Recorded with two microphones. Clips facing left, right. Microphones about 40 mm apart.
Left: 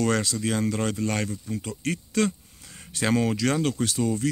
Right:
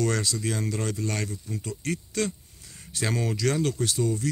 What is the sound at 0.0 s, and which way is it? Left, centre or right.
Speech, left.